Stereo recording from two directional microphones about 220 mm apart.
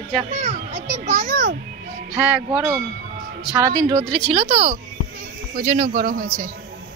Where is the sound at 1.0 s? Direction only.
35° right (ahead or behind).